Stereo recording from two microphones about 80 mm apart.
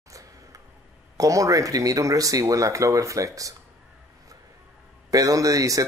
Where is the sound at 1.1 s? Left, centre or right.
Right.